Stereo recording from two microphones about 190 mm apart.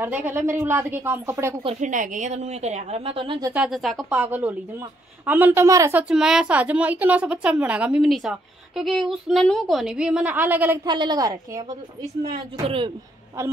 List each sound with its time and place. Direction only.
0.0 s a woman's voice: 10° right (ahead or behind)
1.6 s a woman's voice: 35° right (ahead or behind)
3.5 s a woman's voice: centre (ahead or behind)
10.9 s a woman's voice: 20° right (ahead or behind)
12.3 s a woman's voice: 30° right (ahead or behind)